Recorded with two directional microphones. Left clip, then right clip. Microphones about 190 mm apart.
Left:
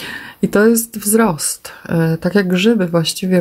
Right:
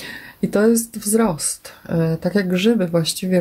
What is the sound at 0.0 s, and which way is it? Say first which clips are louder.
Speech: left 5 dB; 30° left (ahead or behind).